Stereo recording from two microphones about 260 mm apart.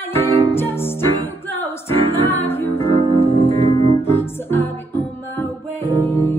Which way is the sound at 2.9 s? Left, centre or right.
Right.